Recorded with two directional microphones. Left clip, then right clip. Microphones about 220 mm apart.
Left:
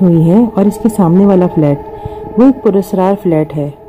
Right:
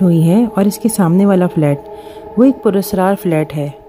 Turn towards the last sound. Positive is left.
turn(degrees=-30)  # may be behind; listen again after turning